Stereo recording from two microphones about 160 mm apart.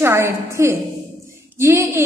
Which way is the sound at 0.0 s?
15° right (ahead or behind).